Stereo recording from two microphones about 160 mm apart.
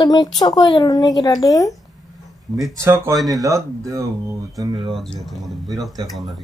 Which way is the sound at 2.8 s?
15° right (ahead or behind).